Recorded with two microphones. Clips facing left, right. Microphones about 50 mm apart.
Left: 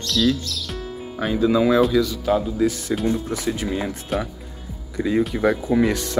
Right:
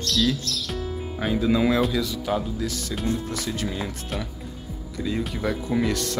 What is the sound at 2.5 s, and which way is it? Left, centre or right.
Speech, left.